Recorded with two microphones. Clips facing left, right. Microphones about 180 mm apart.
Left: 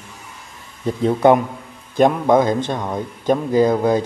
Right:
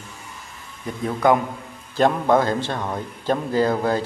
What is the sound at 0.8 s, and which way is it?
Speech, 30° left (ahead or behind).